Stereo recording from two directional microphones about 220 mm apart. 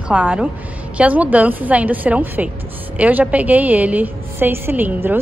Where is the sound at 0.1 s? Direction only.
5° right (ahead or behind).